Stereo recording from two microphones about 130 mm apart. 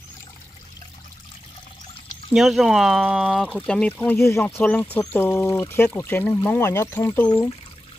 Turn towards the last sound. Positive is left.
turn(degrees=15)  # may be behind; listen again after turning